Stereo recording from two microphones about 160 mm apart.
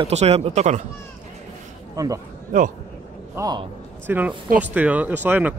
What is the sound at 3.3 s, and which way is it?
Speech, 25° right (ahead or behind).